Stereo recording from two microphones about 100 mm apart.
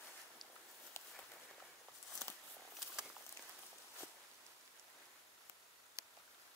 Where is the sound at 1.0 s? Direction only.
25° left (ahead or behind).